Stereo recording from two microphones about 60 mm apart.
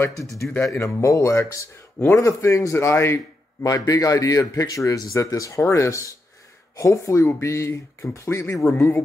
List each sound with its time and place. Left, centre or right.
0.2 s speech: left
3.6 s a man's voice: left
5.6 s speech: left